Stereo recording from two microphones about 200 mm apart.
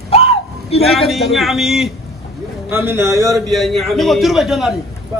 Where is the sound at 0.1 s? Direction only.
30° left (ahead or behind).